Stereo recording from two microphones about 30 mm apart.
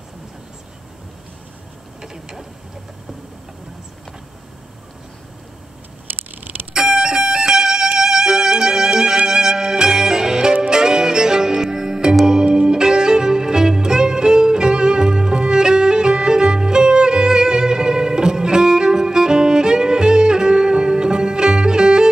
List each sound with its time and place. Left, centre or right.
6.7 s music: centre
8.0 s violin: right
8.5 s music: right